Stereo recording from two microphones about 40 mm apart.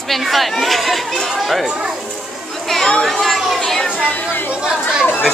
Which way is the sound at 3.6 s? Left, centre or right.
Centre.